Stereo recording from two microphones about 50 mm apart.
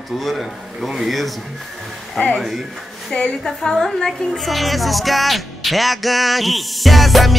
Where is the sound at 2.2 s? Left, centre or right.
Left.